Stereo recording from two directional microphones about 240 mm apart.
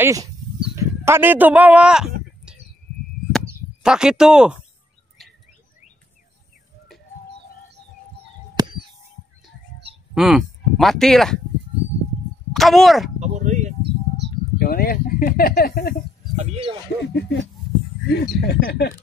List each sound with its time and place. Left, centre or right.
0.0 s livestock: centre
2.5 s a sound: centre
3.3 s chop: centre
5.2 s bird: centre
8.6 s a sound: centre
10.1 s speech: centre
12.5 s speech: centre
13.2 s a sound: right
14.6 s speech: left
16.3 s speech: right
17.1 s speech: left